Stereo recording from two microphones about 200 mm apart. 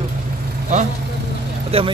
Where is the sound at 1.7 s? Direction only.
30° right (ahead or behind).